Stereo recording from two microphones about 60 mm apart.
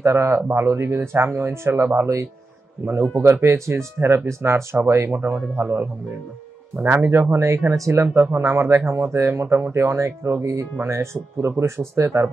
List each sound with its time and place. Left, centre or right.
0.0 s a man's voice: right